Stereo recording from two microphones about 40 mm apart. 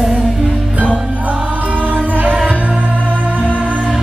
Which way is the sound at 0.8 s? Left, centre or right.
Right.